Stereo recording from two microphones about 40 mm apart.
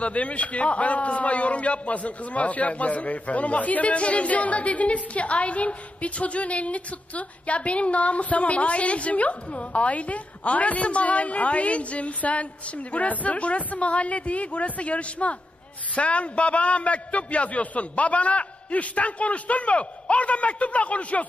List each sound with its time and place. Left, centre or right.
0.0 s a man's voice: left